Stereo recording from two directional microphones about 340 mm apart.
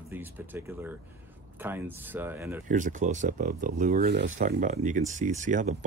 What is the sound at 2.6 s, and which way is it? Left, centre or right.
Speech, right.